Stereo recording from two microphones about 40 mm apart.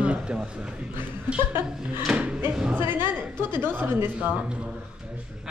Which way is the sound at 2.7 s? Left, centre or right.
Right.